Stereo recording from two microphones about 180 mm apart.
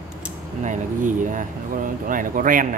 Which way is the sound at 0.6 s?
45° right (ahead or behind).